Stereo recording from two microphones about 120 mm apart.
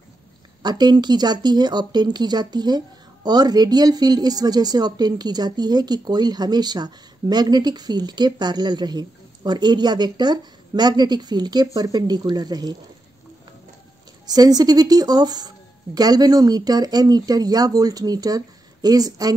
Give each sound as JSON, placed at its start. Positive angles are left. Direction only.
{"t": 0.6, "sound": "a woman's voice", "side_deg": -35}
{"t": 14.2, "sound": "a woman's voice", "side_deg": -35}